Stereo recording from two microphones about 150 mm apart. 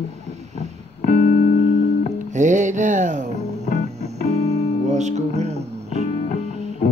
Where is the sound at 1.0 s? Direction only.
60° left (ahead or behind).